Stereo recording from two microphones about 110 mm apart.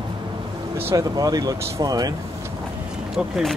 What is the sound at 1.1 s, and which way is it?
Speech, 35° right (ahead or behind).